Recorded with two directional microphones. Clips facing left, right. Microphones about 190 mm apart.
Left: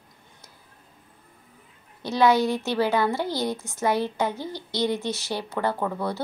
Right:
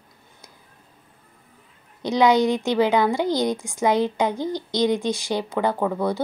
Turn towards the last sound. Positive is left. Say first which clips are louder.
# right 5 dB
turn(degrees=-15)  # may be behind; listen again after turning